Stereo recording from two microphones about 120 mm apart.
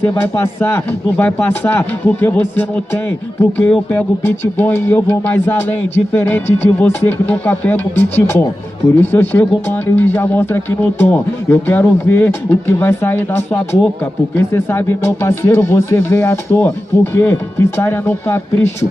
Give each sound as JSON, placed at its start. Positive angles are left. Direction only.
{"t": 0.1, "sound": "speech", "side_deg": 20}